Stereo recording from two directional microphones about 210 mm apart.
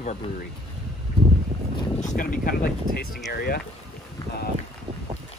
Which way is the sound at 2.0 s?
40° left (ahead or behind).